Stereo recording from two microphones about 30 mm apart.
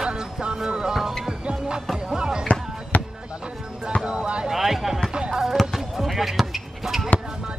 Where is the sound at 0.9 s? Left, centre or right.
Centre.